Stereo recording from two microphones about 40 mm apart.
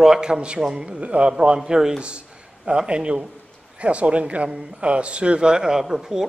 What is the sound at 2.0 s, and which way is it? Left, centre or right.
Speech, right.